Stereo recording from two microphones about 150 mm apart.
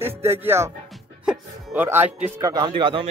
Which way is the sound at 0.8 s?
Centre (ahead or behind).